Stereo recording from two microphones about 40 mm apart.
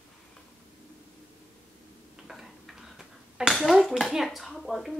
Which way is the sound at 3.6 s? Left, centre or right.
Centre.